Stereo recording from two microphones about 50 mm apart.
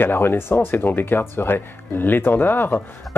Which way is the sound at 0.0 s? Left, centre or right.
Left.